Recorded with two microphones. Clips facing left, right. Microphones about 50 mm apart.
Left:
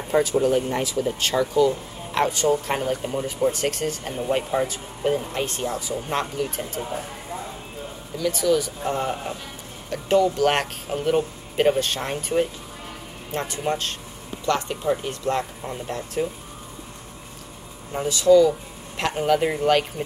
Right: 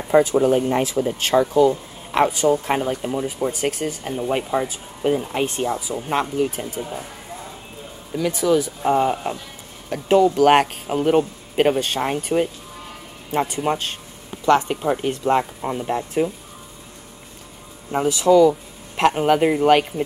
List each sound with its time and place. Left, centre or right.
0.2 s speech: right
2.1 s speech: centre
8.2 s speech: centre
17.9 s speech: right